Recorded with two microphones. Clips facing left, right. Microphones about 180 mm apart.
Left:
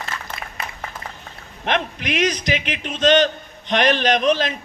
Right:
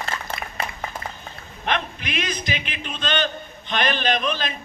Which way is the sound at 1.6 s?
85° left.